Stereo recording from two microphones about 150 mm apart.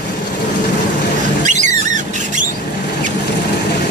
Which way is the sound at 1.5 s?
55° right (ahead or behind).